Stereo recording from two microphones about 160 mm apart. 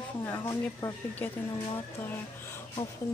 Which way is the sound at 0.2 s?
15° left (ahead or behind).